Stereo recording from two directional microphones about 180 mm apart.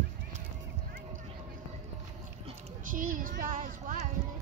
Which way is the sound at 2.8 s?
50° right (ahead or behind).